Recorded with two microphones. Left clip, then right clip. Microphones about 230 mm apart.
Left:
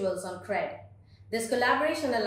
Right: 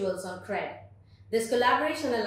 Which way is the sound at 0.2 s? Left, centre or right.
Centre.